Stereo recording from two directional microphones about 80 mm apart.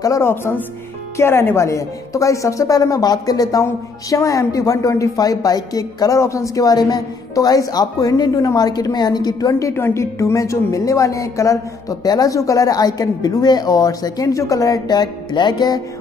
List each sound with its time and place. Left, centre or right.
0.2 s a woman's voice: left